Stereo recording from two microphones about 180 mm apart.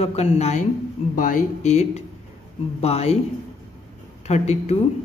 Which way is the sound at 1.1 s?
50° left (ahead or behind).